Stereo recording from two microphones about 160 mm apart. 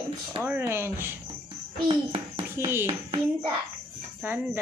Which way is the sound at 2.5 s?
15° right (ahead or behind).